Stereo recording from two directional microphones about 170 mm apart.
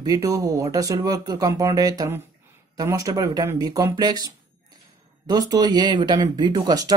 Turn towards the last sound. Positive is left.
turn(degrees=-20)  # may be behind; listen again after turning